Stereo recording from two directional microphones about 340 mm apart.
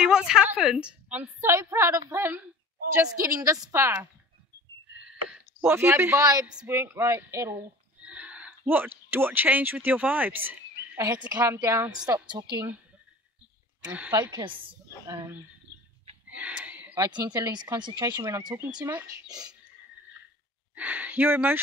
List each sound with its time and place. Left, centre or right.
0.0 s a sound: centre
0.6 s a woman's voice: centre
5.6 s a man's voice: centre
13.8 s a woman's voice: centre
16.3 s a woman's voice: centre
20.7 s speech: centre